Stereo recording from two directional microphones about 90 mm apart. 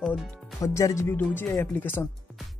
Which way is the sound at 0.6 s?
35° left (ahead or behind).